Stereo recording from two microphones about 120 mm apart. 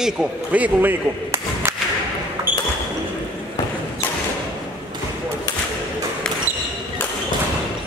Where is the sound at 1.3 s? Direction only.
25° right (ahead or behind).